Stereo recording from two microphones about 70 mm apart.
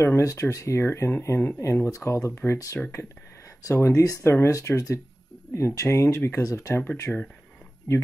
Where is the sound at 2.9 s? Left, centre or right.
Left.